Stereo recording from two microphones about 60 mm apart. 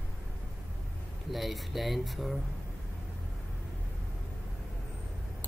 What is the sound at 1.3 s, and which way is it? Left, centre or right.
Speech, centre.